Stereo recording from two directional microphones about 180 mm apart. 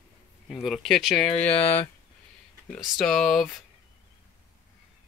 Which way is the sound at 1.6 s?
35° left (ahead or behind).